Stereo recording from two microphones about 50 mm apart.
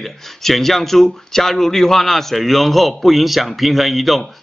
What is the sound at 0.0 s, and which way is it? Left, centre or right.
Speech, centre.